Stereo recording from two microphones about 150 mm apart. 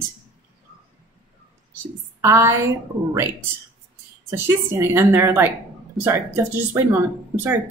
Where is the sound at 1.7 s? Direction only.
20° right (ahead or behind).